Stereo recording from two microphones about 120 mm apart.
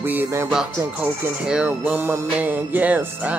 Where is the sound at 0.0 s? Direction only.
15° right (ahead or behind).